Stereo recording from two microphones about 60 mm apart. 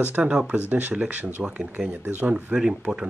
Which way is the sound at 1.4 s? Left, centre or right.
Centre.